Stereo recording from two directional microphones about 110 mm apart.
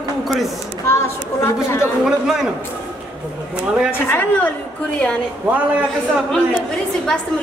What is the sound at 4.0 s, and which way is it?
Speech, 20° left (ahead or behind).